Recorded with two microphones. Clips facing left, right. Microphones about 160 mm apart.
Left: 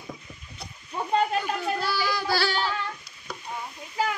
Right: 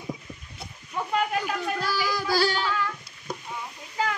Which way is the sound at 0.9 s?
30° left (ahead or behind).